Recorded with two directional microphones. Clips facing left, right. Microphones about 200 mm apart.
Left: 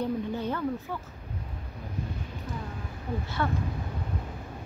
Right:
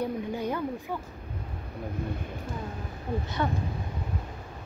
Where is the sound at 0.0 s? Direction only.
10° right (ahead or behind).